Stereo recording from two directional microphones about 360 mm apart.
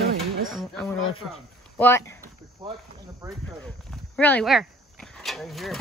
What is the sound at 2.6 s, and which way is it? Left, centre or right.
Speech, centre.